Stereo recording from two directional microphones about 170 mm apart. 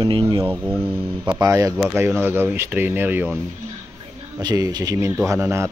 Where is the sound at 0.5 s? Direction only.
10° right (ahead or behind).